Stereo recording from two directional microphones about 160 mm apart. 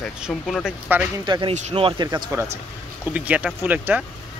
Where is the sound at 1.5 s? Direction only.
40° right (ahead or behind).